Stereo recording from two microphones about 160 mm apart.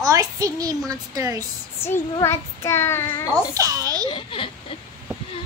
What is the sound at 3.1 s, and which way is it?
Speech, 20° left (ahead or behind).